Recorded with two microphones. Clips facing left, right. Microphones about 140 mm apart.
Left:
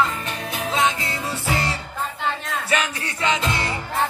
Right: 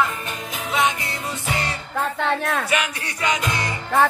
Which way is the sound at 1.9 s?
70° right (ahead or behind).